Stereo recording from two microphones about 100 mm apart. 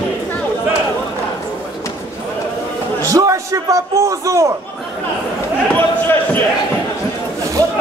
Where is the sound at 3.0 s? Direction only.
35° right (ahead or behind).